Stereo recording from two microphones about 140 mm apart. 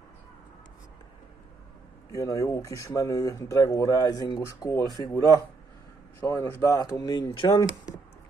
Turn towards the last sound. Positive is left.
turn(degrees=25)  # may be behind; listen again after turning